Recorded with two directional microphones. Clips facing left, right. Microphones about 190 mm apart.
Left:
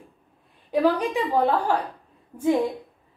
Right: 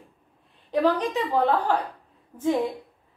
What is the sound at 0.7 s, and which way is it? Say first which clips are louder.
A woman's voice: left 1 dB; 10° left (ahead or behind).